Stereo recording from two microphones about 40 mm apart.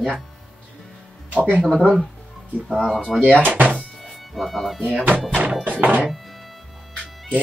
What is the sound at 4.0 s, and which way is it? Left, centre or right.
Music, centre.